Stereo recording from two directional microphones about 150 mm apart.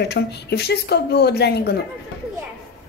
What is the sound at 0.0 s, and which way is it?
Speech, 90° left.